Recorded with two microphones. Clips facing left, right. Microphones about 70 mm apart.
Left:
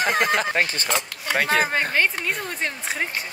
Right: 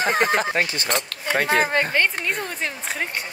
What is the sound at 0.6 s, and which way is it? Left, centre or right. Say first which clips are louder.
Speech: even; left.